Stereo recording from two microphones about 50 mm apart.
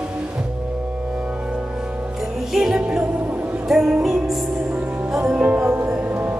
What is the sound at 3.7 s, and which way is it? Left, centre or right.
Music, centre.